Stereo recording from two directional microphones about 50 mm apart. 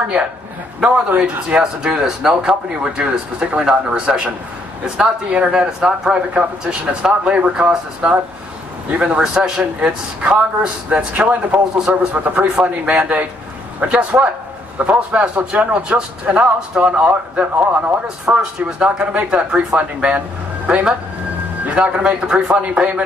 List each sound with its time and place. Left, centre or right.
0.2 s speech: centre
5.3 s speech: centre
9.2 s speech: centre
9.8 s speech: right
11.1 s speech: right
18.0 s speech: centre